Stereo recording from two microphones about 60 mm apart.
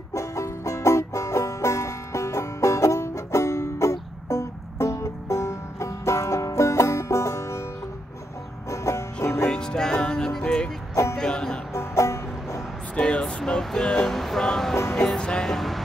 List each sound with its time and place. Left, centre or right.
0.1 s music: left
8.6 s music: left
9.5 s music: centre
11.7 s music: left
12.9 s a sound: centre
13.5 s music: centre